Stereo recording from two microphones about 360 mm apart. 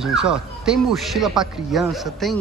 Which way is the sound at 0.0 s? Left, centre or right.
Centre.